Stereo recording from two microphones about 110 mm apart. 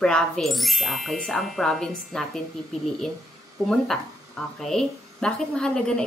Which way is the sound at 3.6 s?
5° left (ahead or behind).